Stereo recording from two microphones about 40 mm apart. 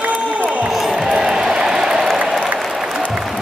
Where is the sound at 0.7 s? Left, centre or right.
Centre.